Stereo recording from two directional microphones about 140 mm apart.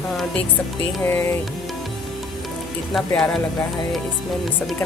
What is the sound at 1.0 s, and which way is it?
Speech, 15° left (ahead or behind).